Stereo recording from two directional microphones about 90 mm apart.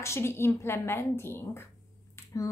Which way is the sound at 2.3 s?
40° left (ahead or behind).